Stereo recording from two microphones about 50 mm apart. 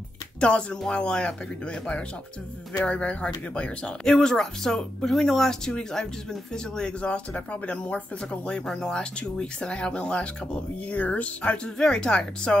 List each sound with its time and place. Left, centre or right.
0.4 s speech: left